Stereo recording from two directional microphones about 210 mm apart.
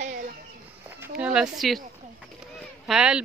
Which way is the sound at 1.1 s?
5° right (ahead or behind).